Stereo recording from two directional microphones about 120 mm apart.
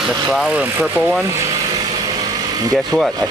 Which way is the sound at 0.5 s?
15° right (ahead or behind).